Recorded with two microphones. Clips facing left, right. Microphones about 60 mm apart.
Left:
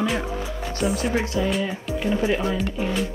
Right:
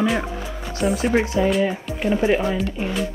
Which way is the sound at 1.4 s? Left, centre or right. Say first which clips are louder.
Right 5 dB; right.